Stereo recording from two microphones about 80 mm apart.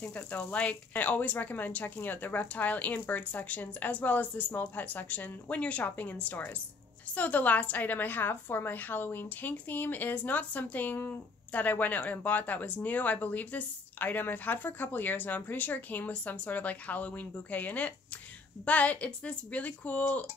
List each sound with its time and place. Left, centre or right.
0.0 s a woman's voice: centre